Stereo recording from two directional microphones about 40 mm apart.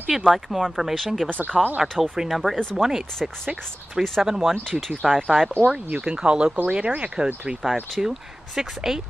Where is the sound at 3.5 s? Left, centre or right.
Right.